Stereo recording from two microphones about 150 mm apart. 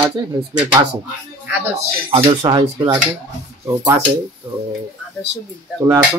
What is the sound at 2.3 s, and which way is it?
Speech, 30° right (ahead or behind).